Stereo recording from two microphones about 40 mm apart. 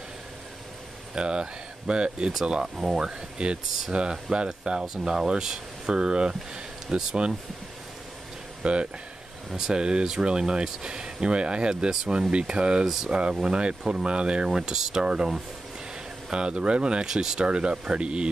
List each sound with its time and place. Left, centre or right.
1.1 s speech: right
8.6 s speech: right
12.8 s speech: centre
13.1 s speech: right